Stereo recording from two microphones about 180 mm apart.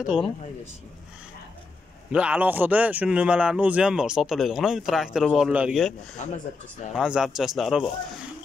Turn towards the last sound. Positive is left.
turn(degrees=0)  # may be behind; listen again after turning